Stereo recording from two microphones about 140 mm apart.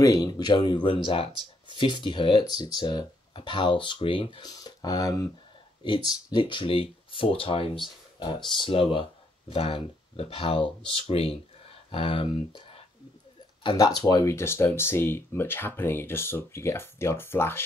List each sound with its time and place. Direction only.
0.0 s speech: 25° left (ahead or behind)